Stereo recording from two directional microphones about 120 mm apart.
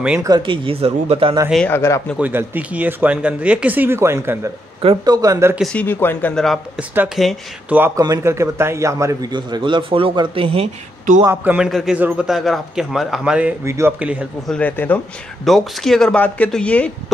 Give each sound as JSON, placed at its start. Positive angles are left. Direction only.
{"t": 0.4, "sound": "a man's voice", "side_deg": -45}
{"t": 1.7, "sound": "speech", "side_deg": 20}
{"t": 2.1, "sound": "a man's voice", "side_deg": -15}
{"t": 5.6, "sound": "speech", "side_deg": 10}
{"t": 6.3, "sound": "speech", "side_deg": 5}
{"t": 7.7, "sound": "a man's voice", "side_deg": -15}
{"t": 9.3, "sound": "a man's voice", "side_deg": -40}
{"t": 11.2, "sound": "speech", "side_deg": -15}
{"t": 13.7, "sound": "a man's voice", "side_deg": -25}
{"t": 13.9, "sound": "speech", "side_deg": -10}
{"t": 14.5, "sound": "speech", "side_deg": 15}
{"t": 15.4, "sound": "speech", "side_deg": 0}